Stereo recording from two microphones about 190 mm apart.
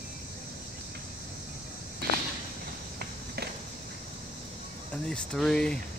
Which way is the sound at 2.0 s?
55° right (ahead or behind).